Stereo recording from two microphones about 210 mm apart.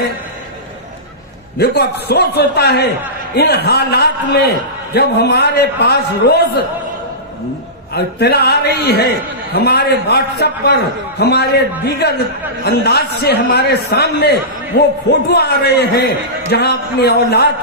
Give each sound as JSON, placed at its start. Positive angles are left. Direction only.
{"t": 1.6, "sound": "a man's voice", "side_deg": 50}
{"t": 7.9, "sound": "a man's voice", "side_deg": 50}